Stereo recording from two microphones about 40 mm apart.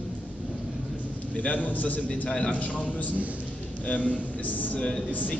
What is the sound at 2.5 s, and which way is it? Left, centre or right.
A man's voice, left.